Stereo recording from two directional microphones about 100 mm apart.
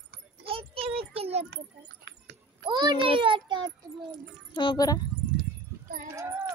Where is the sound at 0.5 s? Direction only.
65° right (ahead or behind).